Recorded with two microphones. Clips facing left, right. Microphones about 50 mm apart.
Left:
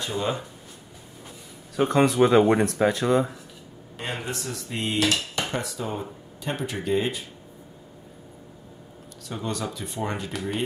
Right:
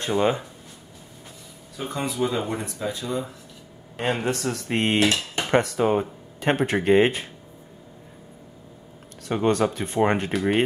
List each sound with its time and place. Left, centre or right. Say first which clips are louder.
0.0 s speech: right 7 dB; right
1.8 s speech: left 7 dB; left
4.0 s speech: right 7 dB; right
5.0 s cutlery: right 2 dB; right
5.5 s speech: right 10 dB; right
9.3 s speech: right 9 dB; right